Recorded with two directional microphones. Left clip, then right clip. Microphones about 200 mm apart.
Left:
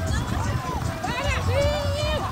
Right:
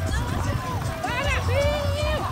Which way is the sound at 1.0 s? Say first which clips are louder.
Right 2 dB; 10° left (ahead or behind).